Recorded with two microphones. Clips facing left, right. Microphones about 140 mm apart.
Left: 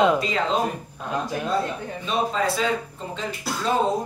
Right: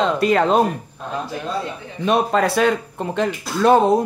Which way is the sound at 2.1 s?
65° right (ahead or behind).